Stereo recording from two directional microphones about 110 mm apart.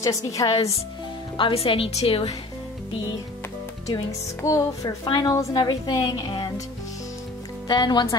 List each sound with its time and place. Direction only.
0.0 s a woman's voice: 30° left (ahead or behind)
1.3 s a woman's voice: 55° left (ahead or behind)
3.8 s speech: 30° left (ahead or behind)
5.0 s a woman's voice: 45° left (ahead or behind)
7.6 s a woman's voice: 40° left (ahead or behind)